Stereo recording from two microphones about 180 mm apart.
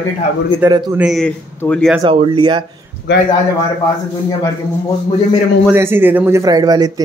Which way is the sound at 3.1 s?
75° left (ahead or behind).